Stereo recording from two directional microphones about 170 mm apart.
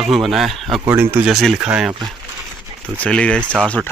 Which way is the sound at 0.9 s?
15° right (ahead or behind).